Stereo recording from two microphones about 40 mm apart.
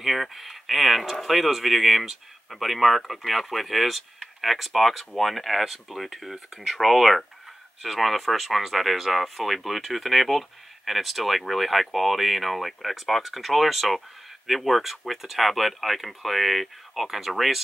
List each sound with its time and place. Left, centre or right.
0.0 s speech: centre